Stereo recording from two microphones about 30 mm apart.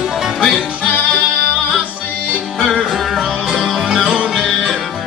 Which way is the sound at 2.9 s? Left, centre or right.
Centre.